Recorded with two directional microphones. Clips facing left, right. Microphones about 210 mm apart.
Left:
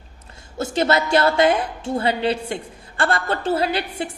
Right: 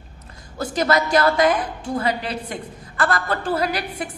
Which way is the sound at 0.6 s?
25° left (ahead or behind).